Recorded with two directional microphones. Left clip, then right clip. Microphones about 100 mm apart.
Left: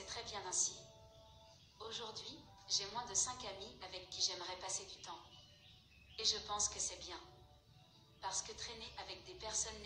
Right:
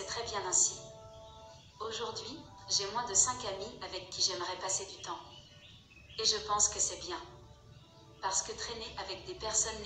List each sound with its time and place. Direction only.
0.0 s music: 15° right (ahead or behind)
1.8 s a woman's voice: 15° right (ahead or behind)
6.4 s a woman's voice: 15° right (ahead or behind)
8.2 s a woman's voice: 15° right (ahead or behind)